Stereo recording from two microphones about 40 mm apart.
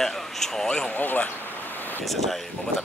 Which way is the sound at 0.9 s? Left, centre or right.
Left.